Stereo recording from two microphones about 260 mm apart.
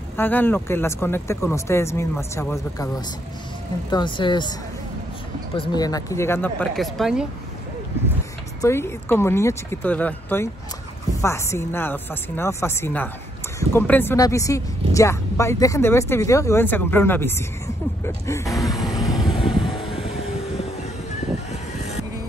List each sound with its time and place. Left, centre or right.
0.2 s speech: centre
3.9 s speech: centre
5.7 s speech: centre
8.5 s speech: centre
18.5 s vehicle: centre
19.4 s vehicle: centre